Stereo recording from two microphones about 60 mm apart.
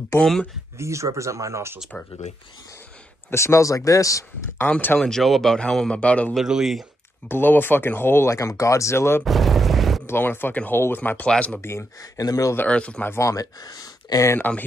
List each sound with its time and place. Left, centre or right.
0.2 s speech: centre
0.7 s speech: right
3.3 s speech: left
4.9 s a man's voice: centre; by 6.3 s left
6.4 s speech: centre
7.2 s speech: left
8.3 s speech: left
8.9 s speech: left
9.2 s a sound: centre
10.0 s speech: left
11.2 s speech: centre
12.2 s speech: left
12.6 s speech: centre
13.2 s speech: left